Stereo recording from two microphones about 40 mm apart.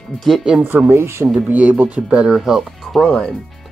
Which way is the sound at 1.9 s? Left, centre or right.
Right.